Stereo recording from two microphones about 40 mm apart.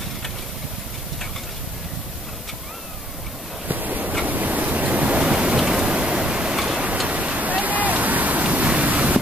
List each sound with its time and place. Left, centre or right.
3.6 s a sound: right
6.5 s tick-tock: centre
7.1 s waves: right